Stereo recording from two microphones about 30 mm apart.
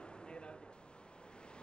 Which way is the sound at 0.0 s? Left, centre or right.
Left.